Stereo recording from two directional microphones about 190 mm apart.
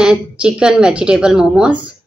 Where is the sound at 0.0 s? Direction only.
5° right (ahead or behind).